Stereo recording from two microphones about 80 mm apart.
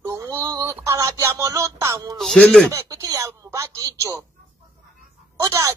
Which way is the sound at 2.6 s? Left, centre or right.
Right.